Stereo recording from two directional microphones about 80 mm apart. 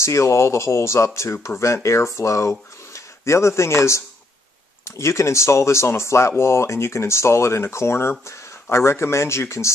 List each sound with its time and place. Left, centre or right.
0.0 s speech: left